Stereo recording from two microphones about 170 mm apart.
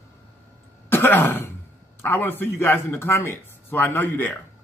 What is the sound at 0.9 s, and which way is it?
Throat clearing, 10° left (ahead or behind).